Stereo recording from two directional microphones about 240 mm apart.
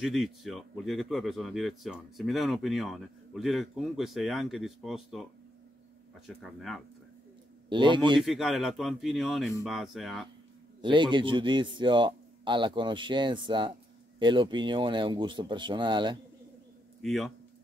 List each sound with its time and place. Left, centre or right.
0.0 s speech: centre
7.7 s a man's voice: centre
8.2 s speech: centre
10.8 s a man's voice: centre
17.0 s speech: centre